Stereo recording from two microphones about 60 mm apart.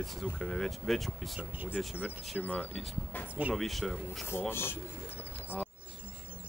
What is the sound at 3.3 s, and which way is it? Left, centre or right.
Speech, right.